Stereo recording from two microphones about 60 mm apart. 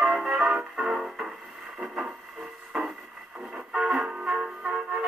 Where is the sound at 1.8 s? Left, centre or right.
Centre.